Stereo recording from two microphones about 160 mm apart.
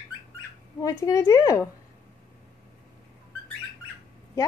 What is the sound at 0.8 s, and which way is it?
Speech, 20° left (ahead or behind).